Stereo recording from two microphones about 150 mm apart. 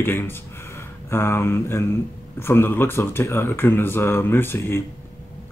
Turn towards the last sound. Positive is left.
turn(degrees=15)  # may be behind; listen again after turning